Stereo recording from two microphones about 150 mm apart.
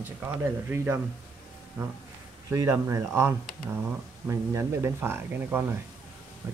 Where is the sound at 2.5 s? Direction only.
20° right (ahead or behind).